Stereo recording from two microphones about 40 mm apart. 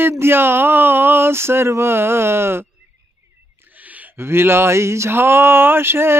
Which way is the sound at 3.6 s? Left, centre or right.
Right.